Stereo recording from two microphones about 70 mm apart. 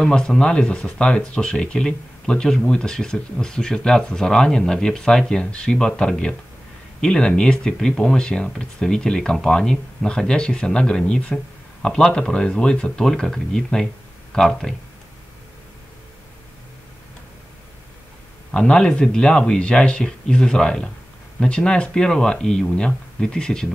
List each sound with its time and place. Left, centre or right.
0.0 s speech: centre
18.5 s speech: centre